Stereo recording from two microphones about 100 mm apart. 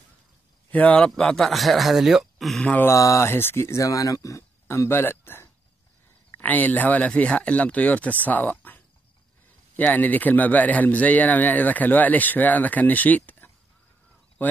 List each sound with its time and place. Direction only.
0.7 s speech: 15° left (ahead or behind)
2.6 s speech: 15° left (ahead or behind)
2.9 s speech: 30° left (ahead or behind)